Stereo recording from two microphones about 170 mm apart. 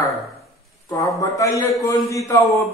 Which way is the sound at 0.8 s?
20° left (ahead or behind).